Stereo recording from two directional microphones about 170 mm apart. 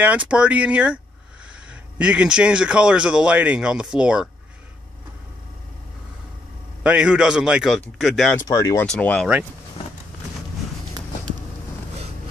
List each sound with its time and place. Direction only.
0.0 s speech: 5° right (ahead or behind)
6.8 s speech: 5° right (ahead or behind)
8.4 s speech: 20° left (ahead or behind)
8.8 s speech: 5° left (ahead or behind)